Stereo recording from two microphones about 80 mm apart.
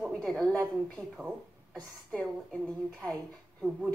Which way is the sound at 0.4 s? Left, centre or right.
Centre.